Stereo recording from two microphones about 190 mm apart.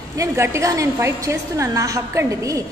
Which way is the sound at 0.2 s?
15° right (ahead or behind).